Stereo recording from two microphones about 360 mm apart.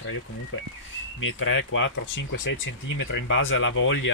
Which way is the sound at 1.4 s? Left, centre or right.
Left.